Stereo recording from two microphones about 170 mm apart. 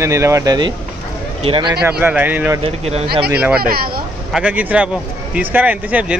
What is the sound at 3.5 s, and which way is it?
Speech, 60° right (ahead or behind).